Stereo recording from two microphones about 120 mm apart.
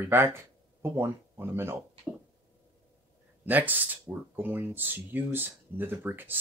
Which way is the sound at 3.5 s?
15° right (ahead or behind).